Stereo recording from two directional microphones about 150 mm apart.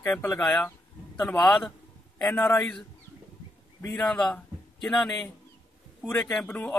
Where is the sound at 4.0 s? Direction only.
5° left (ahead or behind).